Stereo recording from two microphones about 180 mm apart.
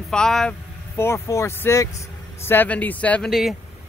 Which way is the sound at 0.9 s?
15° left (ahead or behind).